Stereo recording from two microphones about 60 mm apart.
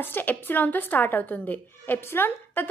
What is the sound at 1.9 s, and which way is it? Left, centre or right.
Speech, left.